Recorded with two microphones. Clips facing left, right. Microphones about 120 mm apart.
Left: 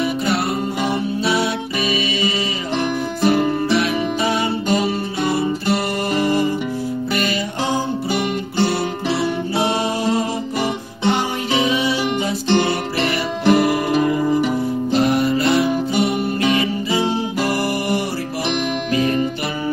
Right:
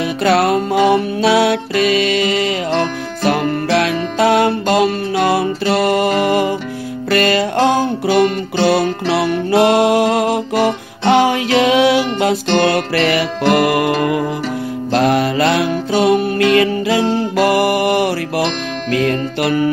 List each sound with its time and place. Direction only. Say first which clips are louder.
0.2 s music: right 7 dB; 90° right
7.1 s music: right 12 dB; 85° right
16.5 s music: right 6 dB; 80° right